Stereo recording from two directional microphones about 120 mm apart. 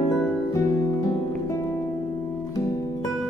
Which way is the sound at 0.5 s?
30° left (ahead or behind).